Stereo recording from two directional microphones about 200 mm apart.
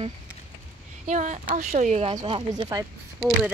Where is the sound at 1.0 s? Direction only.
35° right (ahead or behind).